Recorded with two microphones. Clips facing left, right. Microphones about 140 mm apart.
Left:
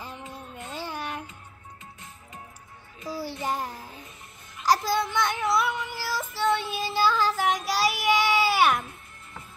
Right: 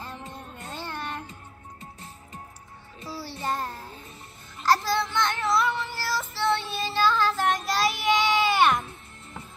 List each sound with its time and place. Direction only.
0.7 s a sound: 10° left (ahead or behind)
1.8 s music: 35° right (ahead or behind)
3.1 s music: 15° left (ahead or behind)
4.6 s child singing: 10° left (ahead or behind)